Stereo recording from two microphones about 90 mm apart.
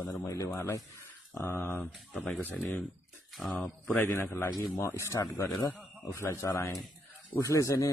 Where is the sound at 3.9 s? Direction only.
30° left (ahead or behind).